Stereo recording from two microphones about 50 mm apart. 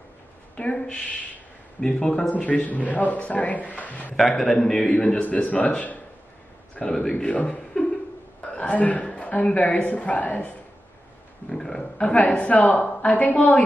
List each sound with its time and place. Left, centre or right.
0.6 s speech: left
2.2 s speech: left
4.4 s speech: centre
4.7 s a man's voice: left
6.9 s speech: centre
7.4 s beatboxing: centre
8.4 s a sound: left
9.9 s speech: left
11.4 s a sound: centre
12.0 s speech: left